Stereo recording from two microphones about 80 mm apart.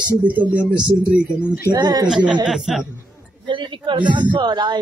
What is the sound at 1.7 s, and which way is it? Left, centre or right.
Speech, right.